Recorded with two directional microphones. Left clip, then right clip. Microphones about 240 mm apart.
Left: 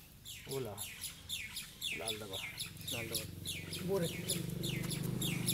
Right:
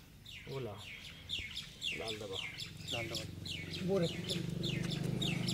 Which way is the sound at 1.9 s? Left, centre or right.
Left.